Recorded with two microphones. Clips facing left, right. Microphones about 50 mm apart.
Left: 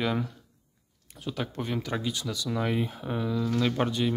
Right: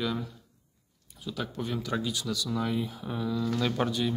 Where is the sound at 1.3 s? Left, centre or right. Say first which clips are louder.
Left 2 dB; left.